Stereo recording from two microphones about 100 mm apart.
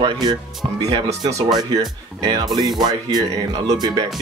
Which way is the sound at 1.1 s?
90° right.